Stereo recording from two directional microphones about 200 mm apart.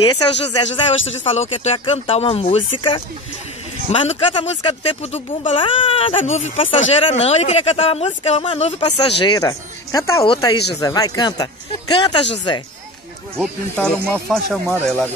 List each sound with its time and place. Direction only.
0.0 s speech: 20° left (ahead or behind)
9.2 s speech: 20° left (ahead or behind)
13.4 s speech: 5° left (ahead or behind)